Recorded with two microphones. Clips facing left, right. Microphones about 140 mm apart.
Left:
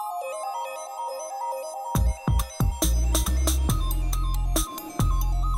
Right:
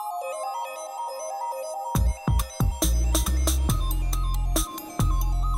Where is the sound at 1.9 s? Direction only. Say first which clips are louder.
Even; centre (ahead or behind).